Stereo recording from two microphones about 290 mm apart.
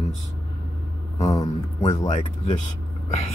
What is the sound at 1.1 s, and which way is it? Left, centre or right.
Speech, centre.